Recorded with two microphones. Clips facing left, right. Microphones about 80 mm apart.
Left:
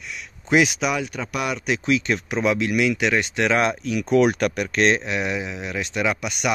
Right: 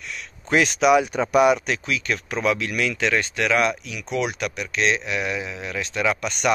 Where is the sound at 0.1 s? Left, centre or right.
Centre.